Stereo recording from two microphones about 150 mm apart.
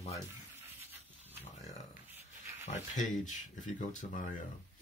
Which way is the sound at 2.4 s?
50° left (ahead or behind).